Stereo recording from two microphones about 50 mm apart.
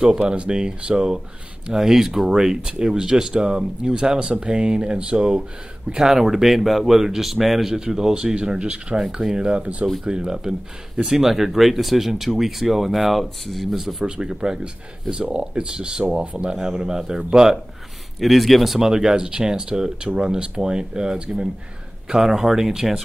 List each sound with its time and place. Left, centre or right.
0.2 s speech: right; by 14.0 s centre
14.0 s speech: centre
18.2 s speech: centre